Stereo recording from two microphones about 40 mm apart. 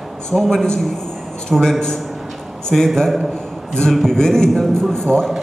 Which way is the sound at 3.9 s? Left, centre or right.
Centre.